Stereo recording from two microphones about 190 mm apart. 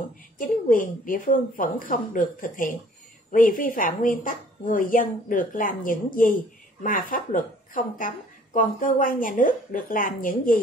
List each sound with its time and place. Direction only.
0.7 s a woman's voice: 45° left (ahead or behind)